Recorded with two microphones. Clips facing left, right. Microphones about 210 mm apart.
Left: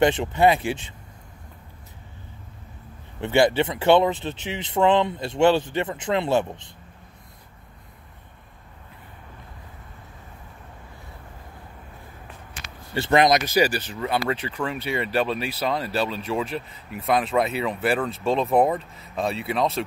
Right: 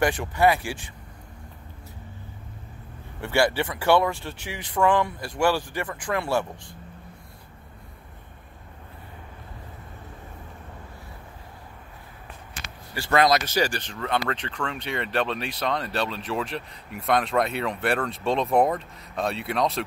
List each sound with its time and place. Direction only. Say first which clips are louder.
0.0 s speech: left 3 dB; 20° left (ahead or behind)
3.2 s speech: left 4 dB; 20° left (ahead or behind)
12.9 s speech: left 2 dB; 20° left (ahead or behind); by 19.8 s centre (ahead or behind)